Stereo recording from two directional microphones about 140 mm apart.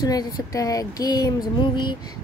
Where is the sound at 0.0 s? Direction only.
25° left (ahead or behind).